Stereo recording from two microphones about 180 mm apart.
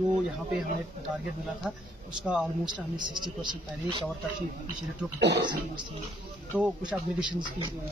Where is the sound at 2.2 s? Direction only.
5° right (ahead or behind).